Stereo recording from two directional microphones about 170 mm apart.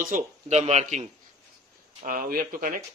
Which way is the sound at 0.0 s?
45° right (ahead or behind).